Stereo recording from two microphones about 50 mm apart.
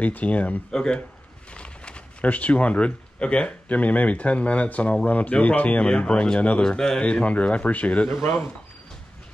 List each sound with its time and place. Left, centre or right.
0.0 s speech: left
0.7 s speech: centre
8.2 s speech: left